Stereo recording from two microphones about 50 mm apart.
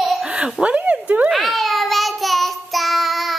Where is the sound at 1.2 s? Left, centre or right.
Centre.